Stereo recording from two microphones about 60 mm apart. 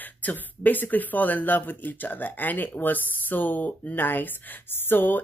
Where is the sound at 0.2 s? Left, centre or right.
Left.